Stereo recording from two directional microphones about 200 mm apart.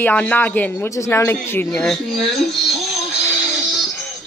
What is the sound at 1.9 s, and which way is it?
Speech, centre (ahead or behind).